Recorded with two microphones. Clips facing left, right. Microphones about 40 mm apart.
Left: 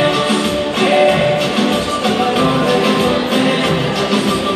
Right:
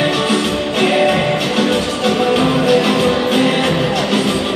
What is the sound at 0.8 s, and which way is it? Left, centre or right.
Music, centre.